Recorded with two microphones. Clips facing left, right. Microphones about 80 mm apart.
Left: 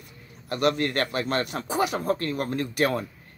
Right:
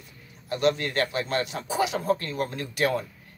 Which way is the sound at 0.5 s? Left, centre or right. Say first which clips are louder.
Left 1 dB; left.